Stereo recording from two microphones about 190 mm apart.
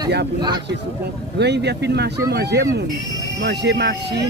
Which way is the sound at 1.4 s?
60° right (ahead or behind).